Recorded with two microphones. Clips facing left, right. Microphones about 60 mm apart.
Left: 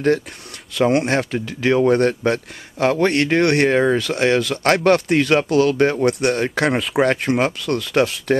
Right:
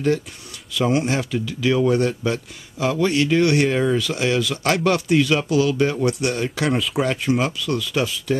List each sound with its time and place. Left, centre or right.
0.7 s speech: left